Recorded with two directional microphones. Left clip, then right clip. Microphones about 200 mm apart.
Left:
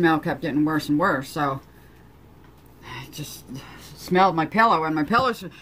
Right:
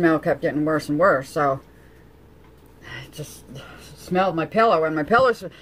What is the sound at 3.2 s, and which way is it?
Speech, 15° right (ahead or behind).